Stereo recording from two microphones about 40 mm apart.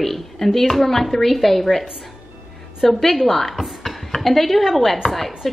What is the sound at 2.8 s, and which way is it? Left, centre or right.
Speech, centre.